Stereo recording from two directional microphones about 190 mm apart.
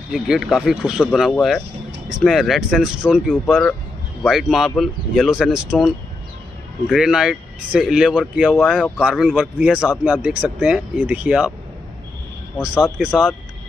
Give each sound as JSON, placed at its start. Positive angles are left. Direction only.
{"t": 0.1, "sound": "speech", "side_deg": 0}
{"t": 6.9, "sound": "speech", "side_deg": 0}
{"t": 8.5, "sound": "speech", "side_deg": 5}
{"t": 12.6, "sound": "speech", "side_deg": -5}